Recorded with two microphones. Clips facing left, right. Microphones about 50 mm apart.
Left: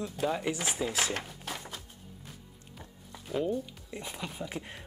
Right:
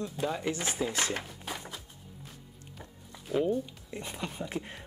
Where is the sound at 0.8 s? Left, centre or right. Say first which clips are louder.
Right 1 dB; centre.